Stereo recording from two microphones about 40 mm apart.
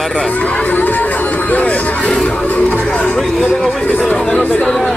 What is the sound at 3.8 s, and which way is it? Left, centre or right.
Speech, left.